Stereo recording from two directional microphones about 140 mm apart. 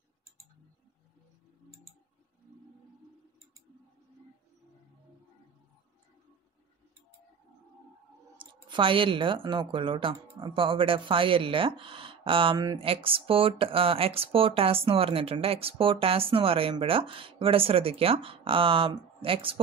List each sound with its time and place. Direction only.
8.4 s speech: 35° right (ahead or behind)